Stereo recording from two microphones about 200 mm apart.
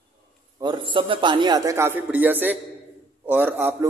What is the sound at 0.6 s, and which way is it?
A man's voice, 25° right (ahead or behind).